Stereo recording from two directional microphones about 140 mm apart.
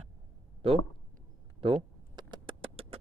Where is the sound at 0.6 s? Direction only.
40° right (ahead or behind).